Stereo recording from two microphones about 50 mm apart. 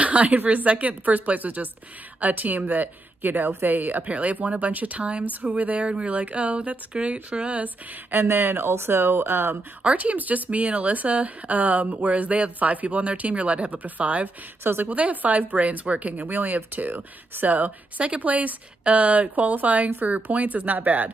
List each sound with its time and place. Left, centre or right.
0.0 s speech: right
8.1 s speech: right
9.8 s speech: right
14.6 s speech: right
14.9 s speech: right